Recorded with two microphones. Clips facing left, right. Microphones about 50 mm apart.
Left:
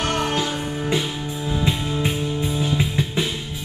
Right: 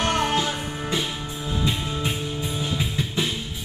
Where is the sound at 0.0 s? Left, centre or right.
Centre.